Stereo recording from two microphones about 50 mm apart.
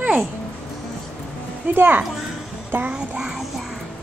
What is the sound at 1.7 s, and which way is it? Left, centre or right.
Speech, right.